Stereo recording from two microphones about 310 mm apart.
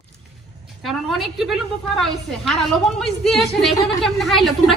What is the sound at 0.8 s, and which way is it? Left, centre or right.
A woman's voice, centre.